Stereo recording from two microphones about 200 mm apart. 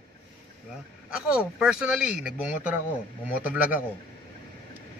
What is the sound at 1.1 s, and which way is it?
A man's voice, 5° right (ahead or behind).